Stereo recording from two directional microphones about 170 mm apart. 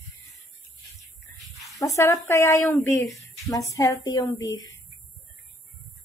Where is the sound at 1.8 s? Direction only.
20° left (ahead or behind).